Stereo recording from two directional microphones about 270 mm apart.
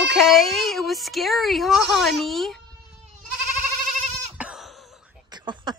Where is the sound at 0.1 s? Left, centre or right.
Centre.